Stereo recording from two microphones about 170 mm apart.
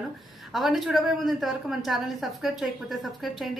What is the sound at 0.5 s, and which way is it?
A woman's voice, centre (ahead or behind).